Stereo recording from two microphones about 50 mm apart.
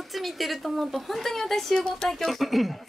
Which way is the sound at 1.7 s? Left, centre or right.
Centre.